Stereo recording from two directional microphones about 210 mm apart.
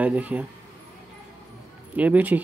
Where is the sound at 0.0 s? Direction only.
5° right (ahead or behind).